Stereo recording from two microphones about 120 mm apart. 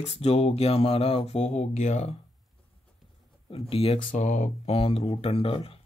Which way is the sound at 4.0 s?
90° left.